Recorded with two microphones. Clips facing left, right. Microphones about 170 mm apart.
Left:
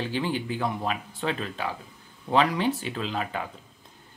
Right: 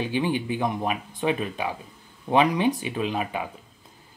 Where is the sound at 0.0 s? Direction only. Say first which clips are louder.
Right 3 dB; 15° right (ahead or behind).